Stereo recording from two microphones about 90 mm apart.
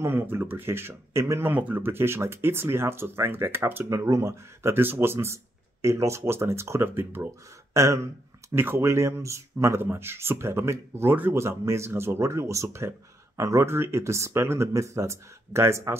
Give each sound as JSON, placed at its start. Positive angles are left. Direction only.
{"t": 0.0, "sound": "speech", "side_deg": -25}
{"t": 1.5, "sound": "speech", "side_deg": -20}